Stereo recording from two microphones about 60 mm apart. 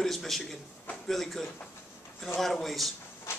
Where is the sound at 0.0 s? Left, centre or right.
Centre.